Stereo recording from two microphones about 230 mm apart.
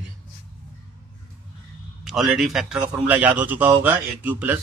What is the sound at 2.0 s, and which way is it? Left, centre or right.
A man's voice, centre.